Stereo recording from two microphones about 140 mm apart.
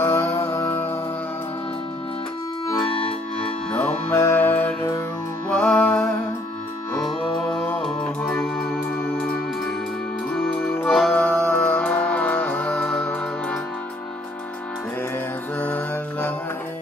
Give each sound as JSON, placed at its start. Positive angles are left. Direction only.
{"t": 0.0, "sound": "music", "side_deg": 15}
{"t": 2.9, "sound": "accordion", "side_deg": 40}
{"t": 4.1, "sound": "music", "side_deg": 20}
{"t": 7.5, "sound": "music", "side_deg": 15}
{"t": 10.3, "sound": "music", "side_deg": 5}
{"t": 15.6, "sound": "music", "side_deg": 10}